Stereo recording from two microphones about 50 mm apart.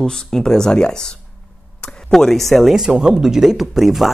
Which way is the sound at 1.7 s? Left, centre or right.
Centre.